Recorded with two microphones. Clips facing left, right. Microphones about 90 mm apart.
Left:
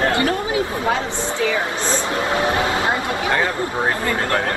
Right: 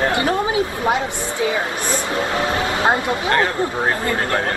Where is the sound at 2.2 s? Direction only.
25° left (ahead or behind).